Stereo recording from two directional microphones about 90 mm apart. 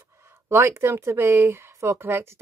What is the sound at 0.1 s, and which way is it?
Speech, 30° right (ahead or behind).